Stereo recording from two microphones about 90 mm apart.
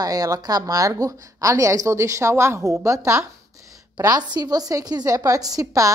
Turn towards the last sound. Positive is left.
turn(degrees=-40)  # may be behind; listen again after turning